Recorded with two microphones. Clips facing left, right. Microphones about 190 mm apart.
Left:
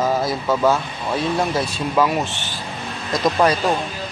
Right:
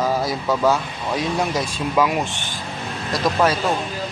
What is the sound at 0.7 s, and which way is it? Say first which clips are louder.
Speech: even; 10° right (ahead or behind).